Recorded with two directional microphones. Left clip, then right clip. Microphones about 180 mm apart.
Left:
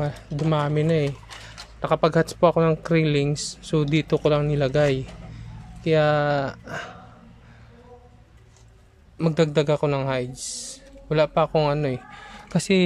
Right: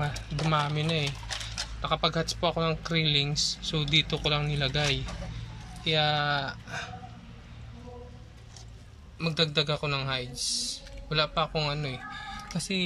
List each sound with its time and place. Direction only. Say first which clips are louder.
0.0 s speech: left 5 dB; 30° left (ahead or behind)
9.2 s a man's voice: left 6 dB; 35° left (ahead or behind); by 12.8 s 55° left (ahead or behind)